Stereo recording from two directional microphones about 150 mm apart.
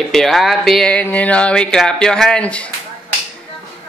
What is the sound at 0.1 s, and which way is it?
Speech, centre (ahead or behind).